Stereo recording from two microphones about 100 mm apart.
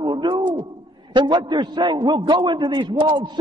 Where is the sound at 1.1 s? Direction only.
50° right (ahead or behind).